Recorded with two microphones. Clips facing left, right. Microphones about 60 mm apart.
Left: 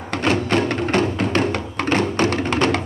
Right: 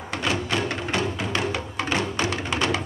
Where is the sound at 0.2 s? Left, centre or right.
Left.